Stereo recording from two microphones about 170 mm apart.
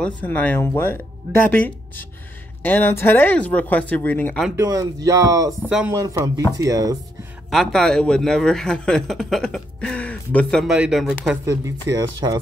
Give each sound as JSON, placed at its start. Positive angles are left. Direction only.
{"t": 0.0, "sound": "speech", "side_deg": 10}
{"t": 4.6, "sound": "speech", "side_deg": -20}
{"t": 5.7, "sound": "a man's voice", "side_deg": -5}
{"t": 5.9, "sound": "speech", "side_deg": -20}
{"t": 7.4, "sound": "a man's voice", "side_deg": 0}
{"t": 11.4, "sound": "speech", "side_deg": -20}